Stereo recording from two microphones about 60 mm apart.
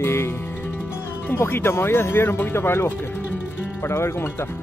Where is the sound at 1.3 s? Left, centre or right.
Left.